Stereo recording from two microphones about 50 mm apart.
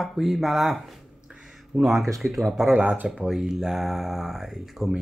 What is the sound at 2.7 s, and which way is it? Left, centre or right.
Speech, right.